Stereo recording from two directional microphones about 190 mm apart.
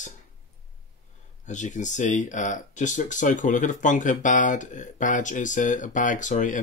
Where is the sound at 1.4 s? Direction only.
40° left (ahead or behind).